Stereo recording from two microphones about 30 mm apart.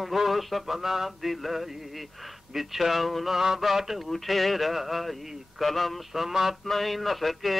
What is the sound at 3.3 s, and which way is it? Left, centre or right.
Male singing, centre.